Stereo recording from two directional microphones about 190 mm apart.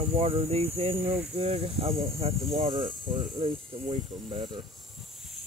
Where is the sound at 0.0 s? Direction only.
30° right (ahead or behind).